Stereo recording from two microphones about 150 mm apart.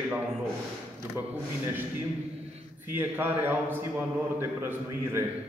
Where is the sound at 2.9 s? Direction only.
15° right (ahead or behind).